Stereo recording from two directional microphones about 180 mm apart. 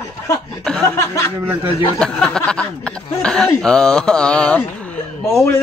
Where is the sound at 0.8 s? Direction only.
15° left (ahead or behind).